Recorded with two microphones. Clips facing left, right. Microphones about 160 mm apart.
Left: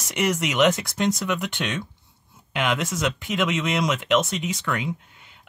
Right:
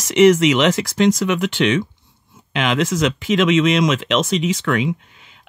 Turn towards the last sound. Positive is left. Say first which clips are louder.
# right 5 dB
turn(degrees=-90)